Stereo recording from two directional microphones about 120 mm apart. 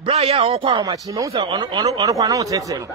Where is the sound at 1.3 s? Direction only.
40° right (ahead or behind).